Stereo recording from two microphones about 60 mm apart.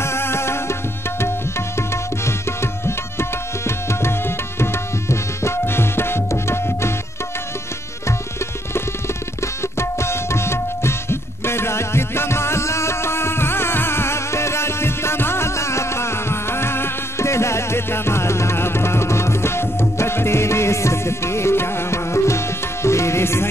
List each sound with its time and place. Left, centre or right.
0.0 s music: left
1.8 s tabla: left
9.4 s music: left